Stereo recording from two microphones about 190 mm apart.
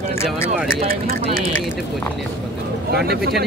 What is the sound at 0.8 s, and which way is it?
Speech, 30° right (ahead or behind).